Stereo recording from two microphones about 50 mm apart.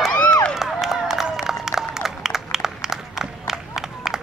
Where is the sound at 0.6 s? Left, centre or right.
Centre.